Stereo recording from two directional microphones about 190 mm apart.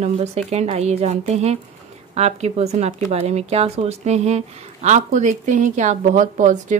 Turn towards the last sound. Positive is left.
turn(degrees=-40)  # may be behind; listen again after turning